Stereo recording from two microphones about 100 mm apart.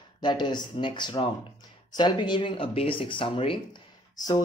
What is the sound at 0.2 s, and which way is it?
Speech, 50° left (ahead or behind).